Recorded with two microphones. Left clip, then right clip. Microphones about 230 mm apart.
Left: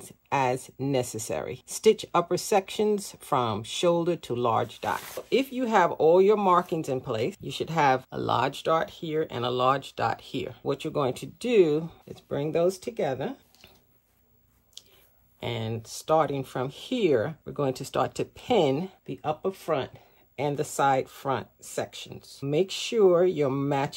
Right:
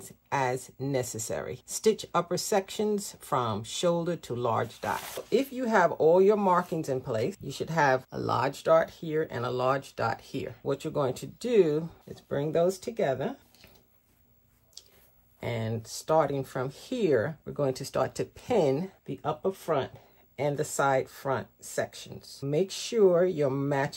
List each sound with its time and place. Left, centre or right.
0.0 s speech: left
15.4 s speech: left
22.4 s speech: left